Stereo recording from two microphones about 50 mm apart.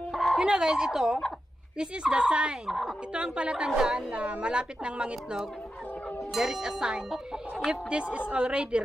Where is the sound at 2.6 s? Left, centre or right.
Centre.